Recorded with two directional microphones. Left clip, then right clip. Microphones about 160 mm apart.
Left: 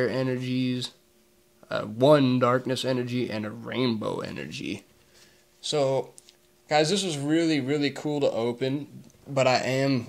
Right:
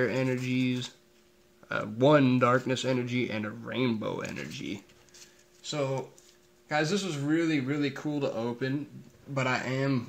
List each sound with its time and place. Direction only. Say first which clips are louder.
0.0 s speech: left 2 dB; 10° left (ahead or behind); by 4.8 s 25° left (ahead or behind)
5.7 s speech: left 7 dB; 35° left (ahead or behind)